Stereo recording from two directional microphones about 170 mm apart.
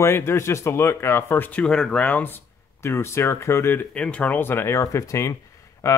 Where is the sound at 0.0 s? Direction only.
15° left (ahead or behind).